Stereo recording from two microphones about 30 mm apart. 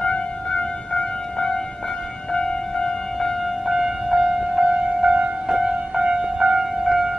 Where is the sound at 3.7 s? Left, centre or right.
Centre.